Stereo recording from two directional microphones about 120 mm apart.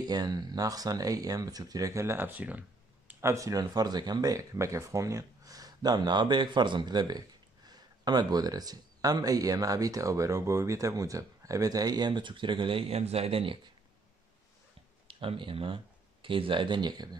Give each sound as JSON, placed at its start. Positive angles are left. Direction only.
{"t": 0.0, "sound": "speech", "side_deg": -35}
{"t": 15.0, "sound": "speech", "side_deg": -50}